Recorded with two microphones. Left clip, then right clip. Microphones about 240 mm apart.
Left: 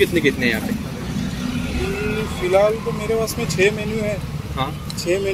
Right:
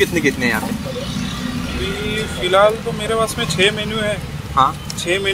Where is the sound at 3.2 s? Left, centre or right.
Right.